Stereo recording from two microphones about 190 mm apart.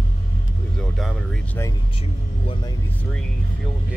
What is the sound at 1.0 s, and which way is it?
Speech, centre (ahead or behind).